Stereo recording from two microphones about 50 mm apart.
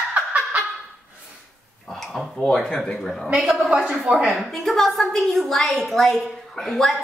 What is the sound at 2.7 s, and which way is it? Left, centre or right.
Speech, centre.